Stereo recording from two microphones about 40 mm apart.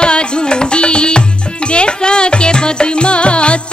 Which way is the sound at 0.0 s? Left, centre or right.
Left.